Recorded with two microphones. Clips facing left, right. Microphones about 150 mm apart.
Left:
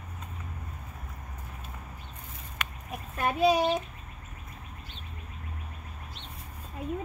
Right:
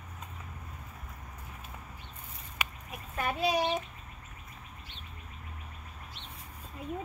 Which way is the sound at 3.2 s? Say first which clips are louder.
Left 5 dB; 90° left.